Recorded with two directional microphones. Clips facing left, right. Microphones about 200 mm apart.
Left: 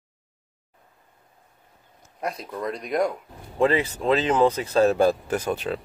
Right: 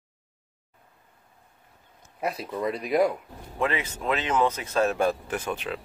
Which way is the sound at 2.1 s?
5° right (ahead or behind).